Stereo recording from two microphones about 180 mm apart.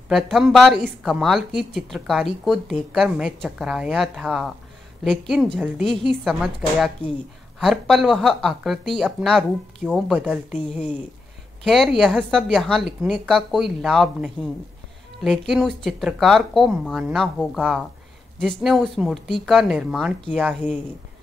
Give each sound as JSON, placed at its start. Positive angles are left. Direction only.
{"t": 0.1, "sound": "speech", "side_deg": 0}
{"t": 11.6, "sound": "speech", "side_deg": 0}